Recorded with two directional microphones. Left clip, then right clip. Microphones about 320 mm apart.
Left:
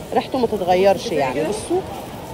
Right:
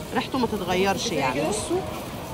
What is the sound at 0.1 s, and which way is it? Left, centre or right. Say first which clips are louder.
Speech: left 6 dB; right.